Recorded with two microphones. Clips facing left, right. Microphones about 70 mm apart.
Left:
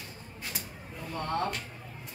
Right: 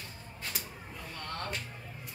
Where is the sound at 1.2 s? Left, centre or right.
Centre.